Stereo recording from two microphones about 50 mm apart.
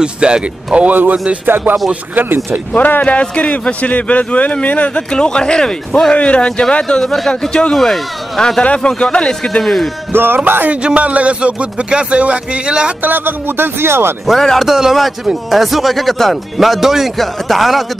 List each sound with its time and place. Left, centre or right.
0.0 s speech: centre
0.8 s speech: right
1.1 s speech: right
2.1 s speech: right
2.7 s a man's voice: left
5.1 s speech: centre
8.6 s speech: centre
10.1 s speech: right
10.7 s speech: right
13.0 s speech: right
14.6 s speech: centre